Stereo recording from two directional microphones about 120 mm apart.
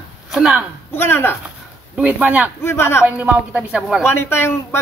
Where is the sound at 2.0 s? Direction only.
10° right (ahead or behind).